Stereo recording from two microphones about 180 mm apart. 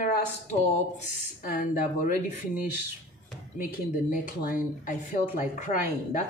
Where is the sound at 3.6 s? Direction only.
45° left (ahead or behind).